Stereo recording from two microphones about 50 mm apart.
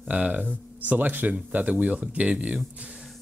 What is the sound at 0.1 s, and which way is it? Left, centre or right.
Speech, right.